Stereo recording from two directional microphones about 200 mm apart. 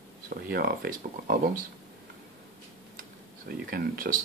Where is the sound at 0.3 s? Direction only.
45° right (ahead or behind).